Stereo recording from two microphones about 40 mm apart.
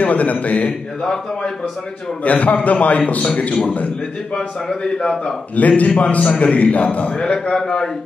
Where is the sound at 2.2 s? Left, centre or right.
Left.